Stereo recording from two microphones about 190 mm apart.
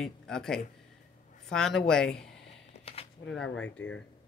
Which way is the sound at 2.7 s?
30° left (ahead or behind).